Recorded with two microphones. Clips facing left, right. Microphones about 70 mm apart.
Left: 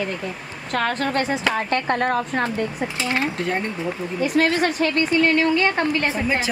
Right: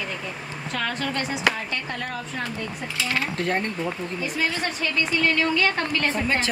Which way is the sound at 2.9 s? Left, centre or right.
Left.